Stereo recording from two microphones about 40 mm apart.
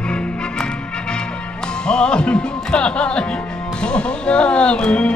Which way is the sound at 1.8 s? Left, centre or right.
Left.